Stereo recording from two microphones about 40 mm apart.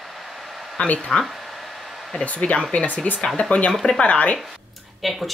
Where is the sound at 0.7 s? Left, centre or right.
Left.